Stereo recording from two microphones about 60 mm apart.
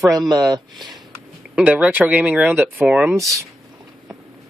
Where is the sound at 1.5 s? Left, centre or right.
Right.